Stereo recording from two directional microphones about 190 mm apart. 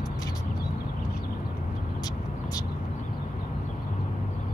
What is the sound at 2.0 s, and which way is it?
Vehicle, 20° left (ahead or behind).